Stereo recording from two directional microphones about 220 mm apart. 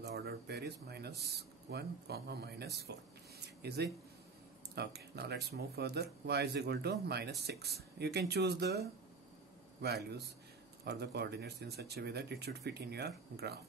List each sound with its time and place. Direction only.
0.0 s speech: 45° right (ahead or behind)
2.9 s a sound: 50° right (ahead or behind)
4.7 s speech: 50° right (ahead or behind)